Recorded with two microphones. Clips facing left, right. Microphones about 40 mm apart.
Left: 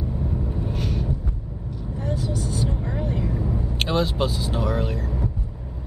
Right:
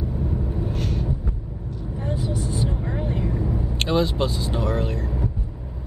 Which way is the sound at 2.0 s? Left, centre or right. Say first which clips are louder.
Even; right.